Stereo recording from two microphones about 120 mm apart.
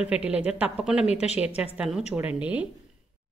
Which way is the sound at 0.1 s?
10° right (ahead or behind).